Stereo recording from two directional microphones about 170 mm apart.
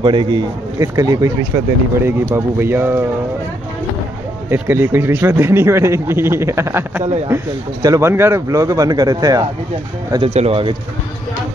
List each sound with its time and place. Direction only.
0.0 s speech: 30° right (ahead or behind); by 3.1 s 10° right (ahead or behind)
4.5 s speech: 15° right (ahead or behind)
10.1 s speech: 35° right (ahead or behind)